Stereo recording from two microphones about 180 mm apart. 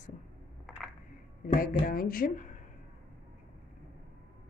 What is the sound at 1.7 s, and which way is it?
Speech, 55° left (ahead or behind).